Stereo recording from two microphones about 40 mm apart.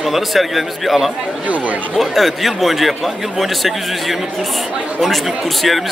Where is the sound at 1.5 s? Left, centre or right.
Right.